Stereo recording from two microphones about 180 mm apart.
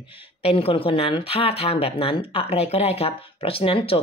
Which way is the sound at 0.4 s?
30° left (ahead or behind).